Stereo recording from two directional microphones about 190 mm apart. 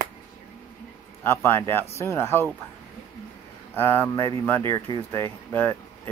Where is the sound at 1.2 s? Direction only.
10° left (ahead or behind).